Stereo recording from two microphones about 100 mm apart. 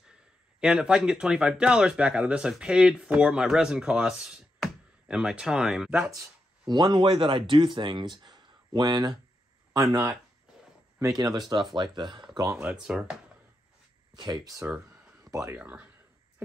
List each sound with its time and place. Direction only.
0.6 s speech: 5° right (ahead or behind)
6.7 s speech: 50° right (ahead or behind)
11.0 s speech: 40° right (ahead or behind)
12.4 s speech: 10° right (ahead or behind)
14.1 s speech: 45° right (ahead or behind)
15.6 s speech: 15° right (ahead or behind)